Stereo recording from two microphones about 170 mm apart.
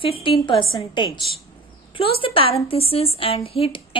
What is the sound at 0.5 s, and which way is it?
A woman's voice, 30° left (ahead or behind).